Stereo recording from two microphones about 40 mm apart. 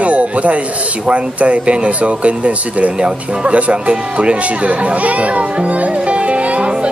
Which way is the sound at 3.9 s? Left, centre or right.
Right.